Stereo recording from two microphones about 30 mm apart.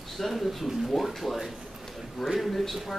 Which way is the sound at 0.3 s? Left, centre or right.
Centre.